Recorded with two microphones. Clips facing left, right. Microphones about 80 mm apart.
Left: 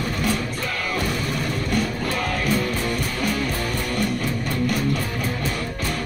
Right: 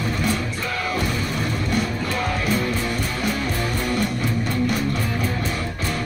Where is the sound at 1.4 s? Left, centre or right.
Right.